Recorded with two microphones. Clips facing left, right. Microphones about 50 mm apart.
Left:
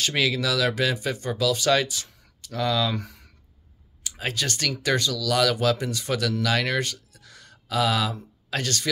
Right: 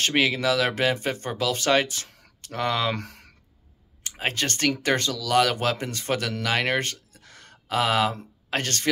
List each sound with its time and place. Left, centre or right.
0.0 s speech: right
2.9 s speech: right
4.1 s speech: right